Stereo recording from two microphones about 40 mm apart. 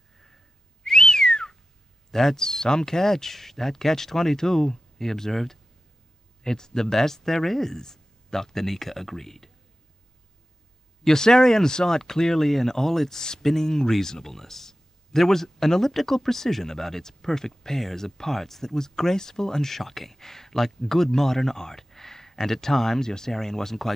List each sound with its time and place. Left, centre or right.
0.8 s whistling: centre
2.0 s speech: centre
11.1 s speech: centre